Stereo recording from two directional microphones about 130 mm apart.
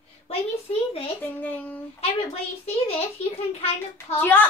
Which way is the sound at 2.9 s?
55° left (ahead or behind).